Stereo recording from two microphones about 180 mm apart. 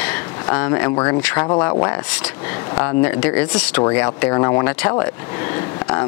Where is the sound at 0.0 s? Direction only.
10° left (ahead or behind).